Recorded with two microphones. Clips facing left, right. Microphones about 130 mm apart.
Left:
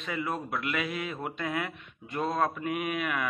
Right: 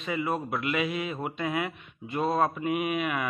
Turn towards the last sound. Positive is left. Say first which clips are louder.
# right 3 dB
turn(degrees=-5)  # may be behind; listen again after turning